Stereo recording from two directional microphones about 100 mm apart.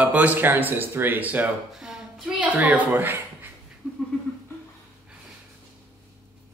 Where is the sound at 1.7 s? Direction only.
5° right (ahead or behind).